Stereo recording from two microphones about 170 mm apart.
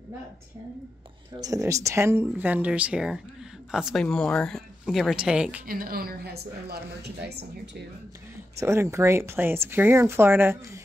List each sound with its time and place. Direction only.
1.4 s speech: 20° right (ahead or behind)
5.7 s a woman's voice: 60° right (ahead or behind)
8.5 s speech: 15° right (ahead or behind)